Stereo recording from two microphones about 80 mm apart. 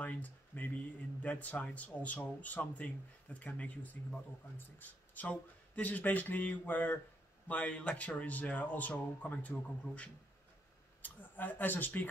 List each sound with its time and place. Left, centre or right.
0.0 s speech: centre